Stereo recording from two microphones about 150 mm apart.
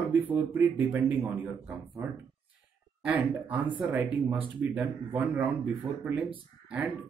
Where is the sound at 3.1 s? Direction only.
10° right (ahead or behind).